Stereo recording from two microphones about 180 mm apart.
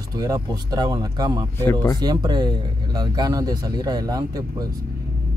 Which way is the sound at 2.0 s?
25° right (ahead or behind).